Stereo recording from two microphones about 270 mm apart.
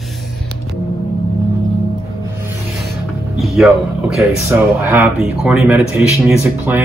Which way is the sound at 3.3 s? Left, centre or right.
Centre.